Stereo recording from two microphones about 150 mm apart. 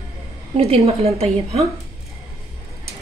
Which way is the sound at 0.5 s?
40° right (ahead or behind).